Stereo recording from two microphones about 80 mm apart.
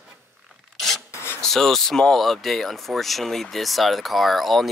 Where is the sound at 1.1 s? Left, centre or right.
Left.